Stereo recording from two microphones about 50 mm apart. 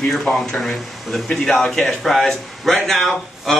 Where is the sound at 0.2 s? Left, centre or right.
Centre.